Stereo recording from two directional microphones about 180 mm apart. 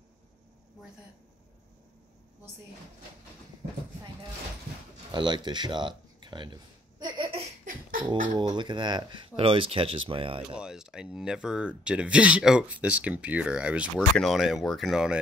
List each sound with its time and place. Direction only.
5.1 s a sound: 25° right (ahead or behind)
8.4 s speech: 25° right (ahead or behind)
10.6 s speech: 5° right (ahead or behind)